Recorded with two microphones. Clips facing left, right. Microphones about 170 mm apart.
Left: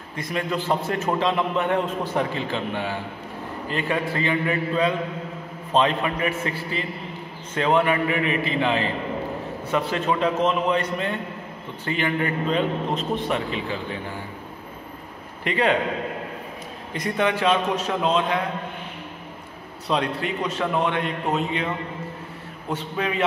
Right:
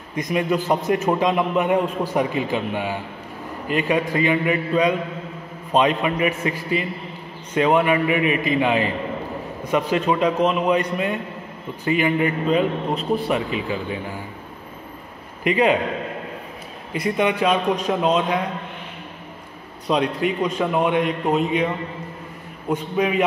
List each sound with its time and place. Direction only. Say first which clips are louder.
0.1 s a man's voice: right 5 dB; 15° right (ahead or behind)
8.2 s a man's voice: right 4 dB; 35° left (ahead or behind)
8.5 s a man's voice: right 3 dB; 15° right (ahead or behind)
15.4 s a man's voice: right 4 dB; 10° right (ahead or behind)
16.9 s a man's voice: right 3 dB; 10° right (ahead or behind)
19.9 s a man's voice: right 4 dB; 15° right (ahead or behind)
22.7 s a man's voice: right 5 dB; 15° right (ahead or behind)